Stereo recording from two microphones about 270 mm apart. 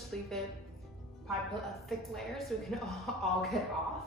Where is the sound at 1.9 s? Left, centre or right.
Centre.